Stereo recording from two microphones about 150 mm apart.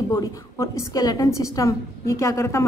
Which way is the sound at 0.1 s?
20° left (ahead or behind).